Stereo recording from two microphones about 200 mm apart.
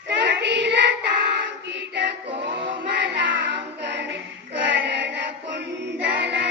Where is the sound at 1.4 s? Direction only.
60° right (ahead or behind).